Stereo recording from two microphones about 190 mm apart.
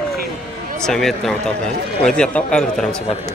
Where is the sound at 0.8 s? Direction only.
Centre (ahead or behind).